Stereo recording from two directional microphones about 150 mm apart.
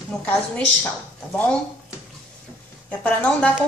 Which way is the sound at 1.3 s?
10° left (ahead or behind).